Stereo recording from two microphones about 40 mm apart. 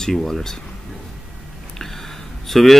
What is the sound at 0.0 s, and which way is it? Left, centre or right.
Speech, centre.